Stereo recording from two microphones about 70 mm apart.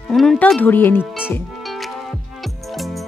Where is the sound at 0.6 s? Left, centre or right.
Left.